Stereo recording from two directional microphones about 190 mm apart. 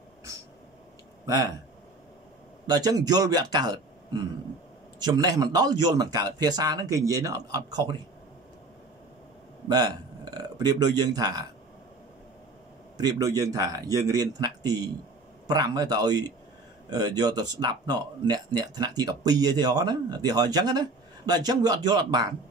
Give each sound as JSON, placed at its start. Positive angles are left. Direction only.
{"t": 1.2, "sound": "speech", "side_deg": -20}
{"t": 2.6, "sound": "speech", "side_deg": -20}
{"t": 9.7, "sound": "speech", "side_deg": -20}
{"t": 12.9, "sound": "speech", "side_deg": -20}